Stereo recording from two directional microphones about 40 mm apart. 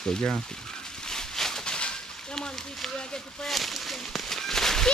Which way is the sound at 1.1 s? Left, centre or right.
Centre.